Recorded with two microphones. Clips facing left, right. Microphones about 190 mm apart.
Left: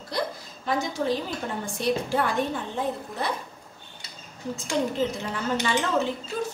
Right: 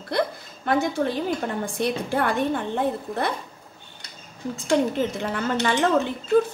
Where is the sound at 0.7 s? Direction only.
60° right (ahead or behind).